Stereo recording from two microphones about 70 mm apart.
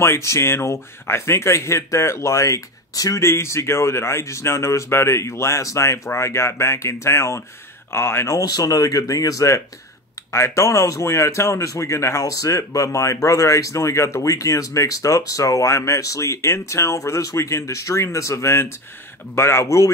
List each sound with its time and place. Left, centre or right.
0.0 s speech: left
3.2 s speech: left
8.4 s speech: left
10.3 s speech: left